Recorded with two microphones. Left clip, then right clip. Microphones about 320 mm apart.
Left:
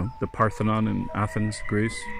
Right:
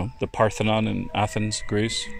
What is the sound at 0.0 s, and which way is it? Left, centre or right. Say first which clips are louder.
Speech: right 2 dB; right.